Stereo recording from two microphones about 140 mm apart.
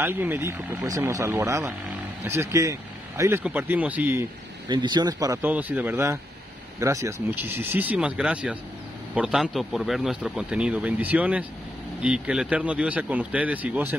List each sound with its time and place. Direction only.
0.0 s speech: 15° right (ahead or behind)
4.6 s speech: 30° right (ahead or behind)
5.4 s speech: 10° right (ahead or behind)